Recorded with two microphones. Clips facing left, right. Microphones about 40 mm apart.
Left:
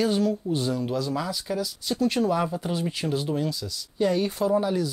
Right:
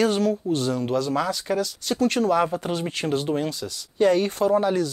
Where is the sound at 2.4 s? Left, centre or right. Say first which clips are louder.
Right 3 dB; right.